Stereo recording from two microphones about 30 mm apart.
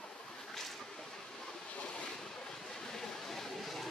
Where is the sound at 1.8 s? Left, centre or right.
Left.